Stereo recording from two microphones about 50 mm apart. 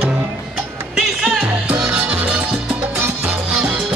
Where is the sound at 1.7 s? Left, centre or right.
Right.